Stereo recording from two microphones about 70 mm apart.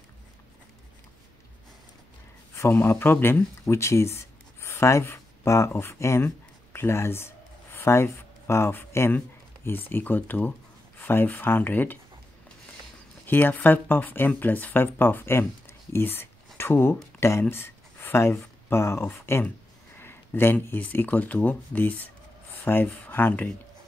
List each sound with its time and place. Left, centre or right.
2.5 s speech: left
13.3 s speech: left
20.0 s a sound: left
20.6 s speech: left